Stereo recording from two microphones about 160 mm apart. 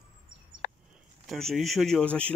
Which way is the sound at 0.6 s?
55° left (ahead or behind).